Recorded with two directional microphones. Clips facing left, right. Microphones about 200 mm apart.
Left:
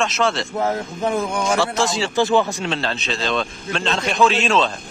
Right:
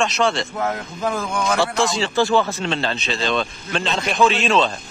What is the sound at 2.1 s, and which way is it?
Speech, 15° left (ahead or behind).